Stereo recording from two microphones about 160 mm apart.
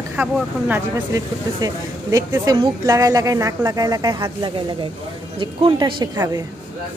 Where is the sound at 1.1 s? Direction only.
20° right (ahead or behind).